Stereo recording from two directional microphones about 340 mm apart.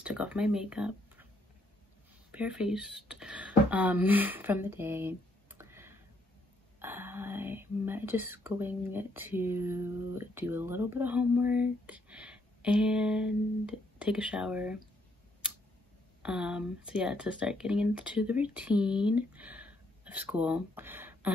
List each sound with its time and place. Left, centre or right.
0.0 s speech: centre
2.3 s speech: centre
16.2 s speech: centre